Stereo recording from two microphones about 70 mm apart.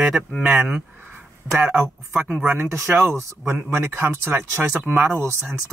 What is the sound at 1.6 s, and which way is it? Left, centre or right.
Speech, right.